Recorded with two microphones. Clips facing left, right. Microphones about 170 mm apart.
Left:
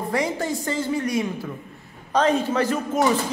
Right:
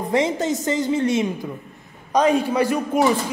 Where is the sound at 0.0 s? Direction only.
20° right (ahead or behind).